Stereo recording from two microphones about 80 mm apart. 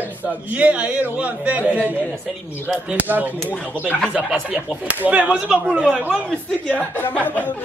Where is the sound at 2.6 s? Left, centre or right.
Centre.